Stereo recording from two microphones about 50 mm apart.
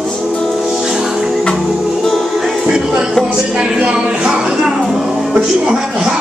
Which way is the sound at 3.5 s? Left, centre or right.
Centre.